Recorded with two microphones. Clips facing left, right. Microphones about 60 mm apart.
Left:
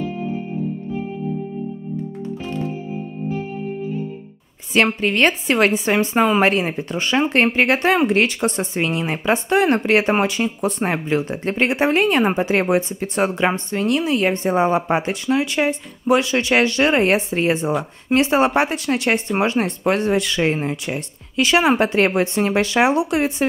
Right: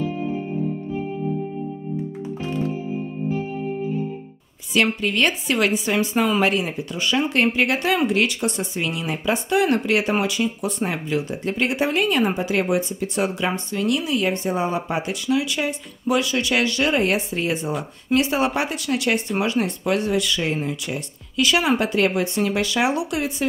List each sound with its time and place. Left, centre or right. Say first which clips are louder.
4.7 s a woman's voice: left 3 dB; left